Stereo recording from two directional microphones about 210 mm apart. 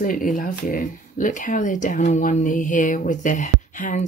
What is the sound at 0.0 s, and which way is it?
Speech, 40° left (ahead or behind).